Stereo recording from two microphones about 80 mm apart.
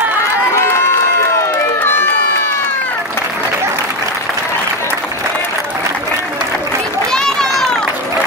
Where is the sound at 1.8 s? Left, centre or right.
Left.